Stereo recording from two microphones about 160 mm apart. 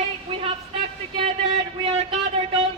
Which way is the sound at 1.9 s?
45° right (ahead or behind).